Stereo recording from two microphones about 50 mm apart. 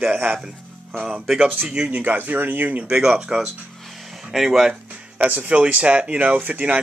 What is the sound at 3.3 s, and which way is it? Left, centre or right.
Speech, centre.